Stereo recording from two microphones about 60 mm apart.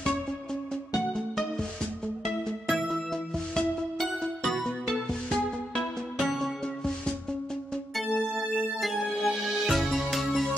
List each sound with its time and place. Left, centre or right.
0.9 s music: centre
8.8 s music: centre